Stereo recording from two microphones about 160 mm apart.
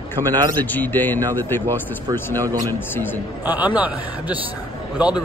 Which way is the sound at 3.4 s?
10° right (ahead or behind).